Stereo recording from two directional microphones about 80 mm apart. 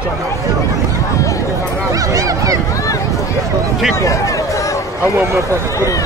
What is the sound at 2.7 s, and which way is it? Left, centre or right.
Run, left.